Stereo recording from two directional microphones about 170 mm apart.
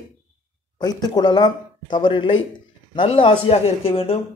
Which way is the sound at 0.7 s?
25° left (ahead or behind).